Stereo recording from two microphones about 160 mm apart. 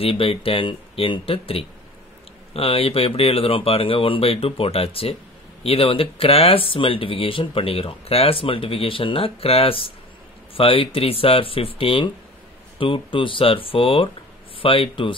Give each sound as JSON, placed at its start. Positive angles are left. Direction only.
{"t": 0.0, "sound": "speech", "side_deg": 35}